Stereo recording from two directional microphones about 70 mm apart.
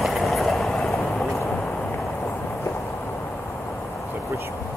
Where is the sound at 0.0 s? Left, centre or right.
Centre.